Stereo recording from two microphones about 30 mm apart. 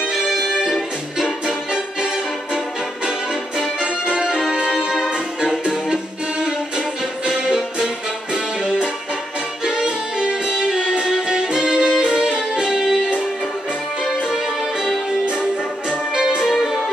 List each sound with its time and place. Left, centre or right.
0.7 s music: centre
3.8 s music: right
9.7 s music: right
10.5 s music: centre